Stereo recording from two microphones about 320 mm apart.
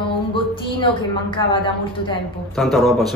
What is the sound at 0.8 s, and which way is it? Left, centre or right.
Speech, centre.